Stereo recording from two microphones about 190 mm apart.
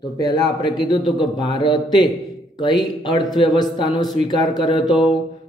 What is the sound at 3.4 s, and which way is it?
Speech, 25° left (ahead or behind).